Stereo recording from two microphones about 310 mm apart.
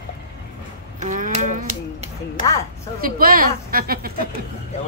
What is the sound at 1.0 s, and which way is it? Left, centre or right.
Speech, right.